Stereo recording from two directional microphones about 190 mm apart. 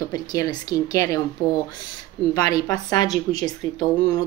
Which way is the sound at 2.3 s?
20° left (ahead or behind).